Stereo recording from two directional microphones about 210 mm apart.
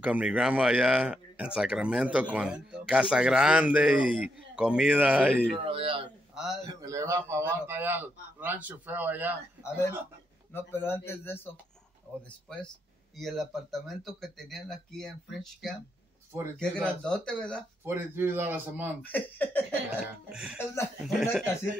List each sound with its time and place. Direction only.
0.0 s speech: 5° right (ahead or behind)
5.7 s speech: 25° right (ahead or behind)
6.3 s a sound: centre (ahead or behind)
6.6 s a man's voice: 15° right (ahead or behind)
9.6 s speech: 10° left (ahead or behind)
12.1 s a man's voice: 10° right (ahead or behind)
12.5 s speech: 5° left (ahead or behind)
17.8 s a man's voice: 10° right (ahead or behind)
19.0 s speech: 10° left (ahead or behind)
19.9 s speech: 5° right (ahead or behind)
20.5 s speech: 10° left (ahead or behind)
21.0 s speech: centre (ahead or behind)